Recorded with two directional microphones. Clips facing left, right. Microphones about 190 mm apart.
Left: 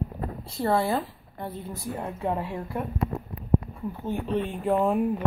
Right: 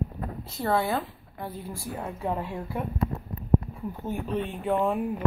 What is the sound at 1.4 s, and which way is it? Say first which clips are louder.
Speech: left 1 dB; 25° left (ahead or behind).